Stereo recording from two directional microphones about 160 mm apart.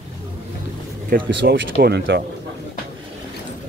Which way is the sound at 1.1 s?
90° right.